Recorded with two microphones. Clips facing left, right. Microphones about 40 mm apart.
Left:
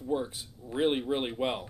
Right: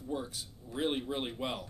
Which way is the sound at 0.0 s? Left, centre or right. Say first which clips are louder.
Left 6 dB; left.